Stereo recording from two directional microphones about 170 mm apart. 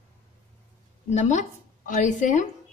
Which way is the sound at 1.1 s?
45° left (ahead or behind).